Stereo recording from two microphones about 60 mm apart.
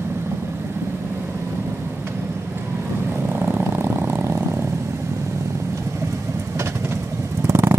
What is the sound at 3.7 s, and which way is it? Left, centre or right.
Vehicle, right.